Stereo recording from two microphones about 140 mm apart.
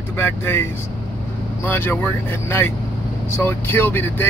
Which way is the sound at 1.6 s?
15° left (ahead or behind).